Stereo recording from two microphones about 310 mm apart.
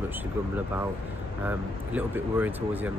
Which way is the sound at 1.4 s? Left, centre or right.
Centre.